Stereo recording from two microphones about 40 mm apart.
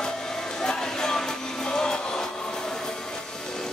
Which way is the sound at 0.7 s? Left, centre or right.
Centre.